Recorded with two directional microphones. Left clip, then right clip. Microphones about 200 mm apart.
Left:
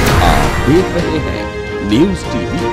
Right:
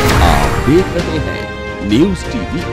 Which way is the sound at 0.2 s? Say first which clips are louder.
Even; centre (ahead or behind).